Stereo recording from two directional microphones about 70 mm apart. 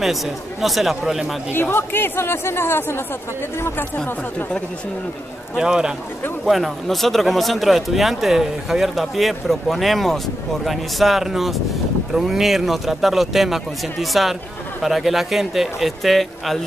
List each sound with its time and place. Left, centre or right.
0.0 s speech: centre
1.5 s speech: left
5.6 s speech: centre
6.4 s speech: centre